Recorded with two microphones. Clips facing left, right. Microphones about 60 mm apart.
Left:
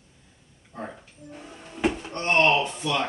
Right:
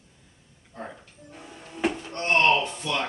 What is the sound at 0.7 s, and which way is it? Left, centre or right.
Speech, centre.